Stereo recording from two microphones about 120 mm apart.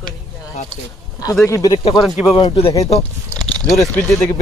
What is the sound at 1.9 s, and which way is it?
Speech, centre (ahead or behind).